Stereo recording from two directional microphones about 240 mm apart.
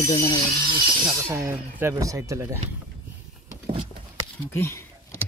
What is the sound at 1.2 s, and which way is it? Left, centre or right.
Speech, centre.